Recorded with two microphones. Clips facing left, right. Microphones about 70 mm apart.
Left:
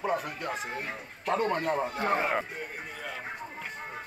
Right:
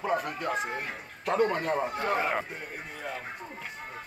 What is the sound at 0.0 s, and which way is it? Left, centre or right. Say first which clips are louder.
Speech: right 1 dB; centre.